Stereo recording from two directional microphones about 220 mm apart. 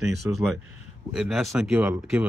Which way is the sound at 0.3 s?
10° right (ahead or behind).